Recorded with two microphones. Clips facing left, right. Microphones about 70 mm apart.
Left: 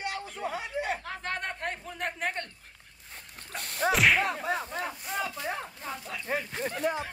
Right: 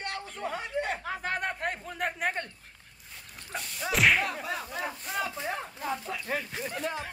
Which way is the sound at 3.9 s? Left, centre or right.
Centre.